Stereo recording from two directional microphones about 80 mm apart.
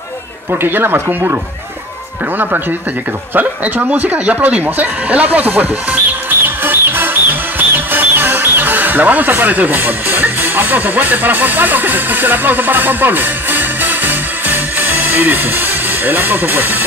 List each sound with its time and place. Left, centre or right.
0.5 s speech: right
3.3 s speech: right
6.4 s music: right